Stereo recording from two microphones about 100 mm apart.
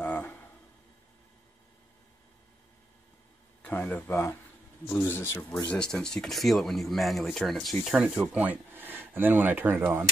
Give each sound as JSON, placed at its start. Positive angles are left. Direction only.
{"t": 0.0, "sound": "a sound", "side_deg": 15}
{"t": 3.6, "sound": "speech", "side_deg": 15}
{"t": 5.7, "sound": "speech", "side_deg": 5}